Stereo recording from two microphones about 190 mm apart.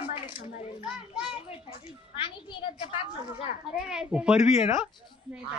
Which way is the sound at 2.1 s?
25° left (ahead or behind).